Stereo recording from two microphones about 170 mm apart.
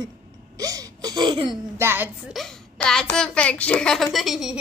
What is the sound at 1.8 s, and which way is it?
Speech, 10° right (ahead or behind).